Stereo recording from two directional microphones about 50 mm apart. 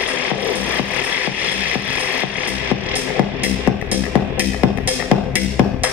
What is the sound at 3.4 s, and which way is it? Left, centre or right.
Music, right.